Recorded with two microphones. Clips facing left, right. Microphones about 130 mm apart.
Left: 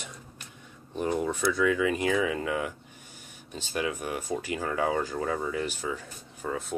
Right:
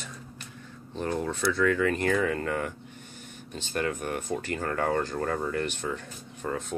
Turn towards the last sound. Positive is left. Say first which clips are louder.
# right 1 dB
turn(degrees=5)  # may be behind; listen again after turning